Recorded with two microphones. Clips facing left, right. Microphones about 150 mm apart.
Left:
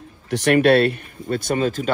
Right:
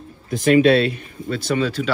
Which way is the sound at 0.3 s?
70° left (ahead or behind).